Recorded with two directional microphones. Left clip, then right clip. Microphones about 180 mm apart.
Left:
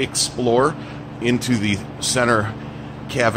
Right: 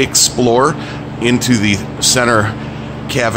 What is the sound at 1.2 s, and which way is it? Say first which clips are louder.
Speech: right 7 dB; centre (ahead or behind).